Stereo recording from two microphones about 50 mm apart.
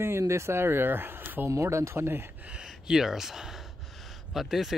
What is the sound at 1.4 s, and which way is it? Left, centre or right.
Speech, right.